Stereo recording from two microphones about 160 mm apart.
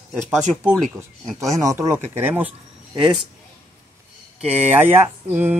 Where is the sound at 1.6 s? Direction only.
20° right (ahead or behind).